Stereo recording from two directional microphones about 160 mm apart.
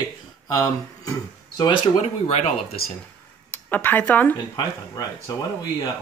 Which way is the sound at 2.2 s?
40° left (ahead or behind).